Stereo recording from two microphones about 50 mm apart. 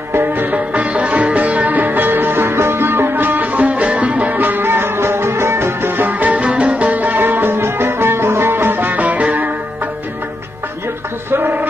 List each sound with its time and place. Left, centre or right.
0.1 s music: right
0.7 s music: right
9.0 s music: right
11.2 s music: right